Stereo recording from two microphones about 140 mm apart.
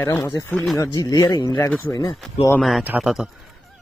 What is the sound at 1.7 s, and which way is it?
Speech, 15° left (ahead or behind).